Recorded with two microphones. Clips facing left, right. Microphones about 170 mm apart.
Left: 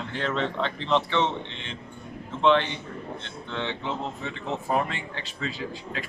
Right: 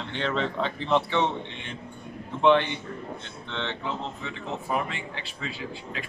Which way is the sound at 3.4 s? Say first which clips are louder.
Left 2 dB; 10° left (ahead or behind).